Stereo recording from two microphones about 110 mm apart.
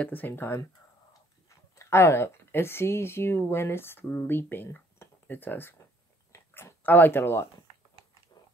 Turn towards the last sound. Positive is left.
turn(degrees=20)  # may be behind; listen again after turning